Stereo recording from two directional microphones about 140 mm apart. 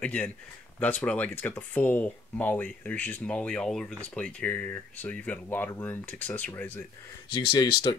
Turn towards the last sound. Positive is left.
turn(degrees=30)  # may be behind; listen again after turning